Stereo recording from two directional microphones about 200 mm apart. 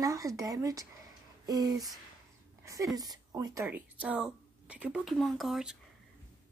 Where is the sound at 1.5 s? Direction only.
20° right (ahead or behind).